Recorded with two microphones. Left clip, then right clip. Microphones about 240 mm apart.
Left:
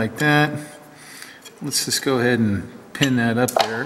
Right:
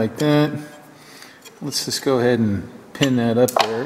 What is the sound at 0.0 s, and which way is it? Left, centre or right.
Speech, centre.